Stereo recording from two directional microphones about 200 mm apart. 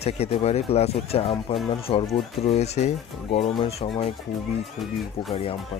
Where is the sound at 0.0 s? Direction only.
30° left (ahead or behind).